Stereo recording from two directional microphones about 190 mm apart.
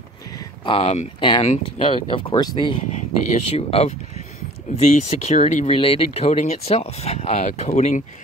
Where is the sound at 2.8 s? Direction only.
40° left (ahead or behind).